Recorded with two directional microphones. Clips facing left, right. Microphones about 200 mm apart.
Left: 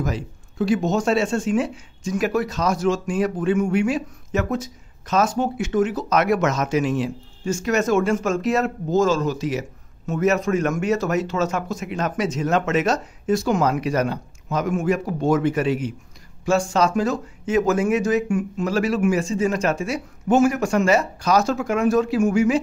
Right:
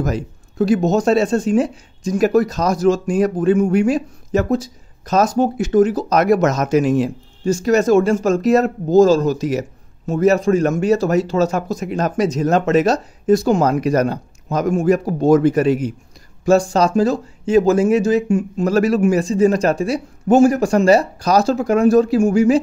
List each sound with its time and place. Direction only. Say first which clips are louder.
0.0 s speech: right 5 dB; 45° right (ahead or behind)
18.7 s speech: right 6 dB; 40° right (ahead or behind)